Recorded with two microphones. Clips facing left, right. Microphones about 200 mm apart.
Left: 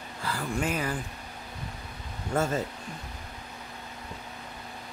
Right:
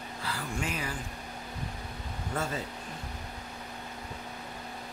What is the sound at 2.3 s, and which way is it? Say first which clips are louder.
Speech: left 7 dB; 45° left (ahead or behind).